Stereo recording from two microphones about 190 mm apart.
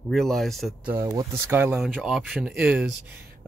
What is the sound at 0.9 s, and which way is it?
Speech, 15° right (ahead or behind).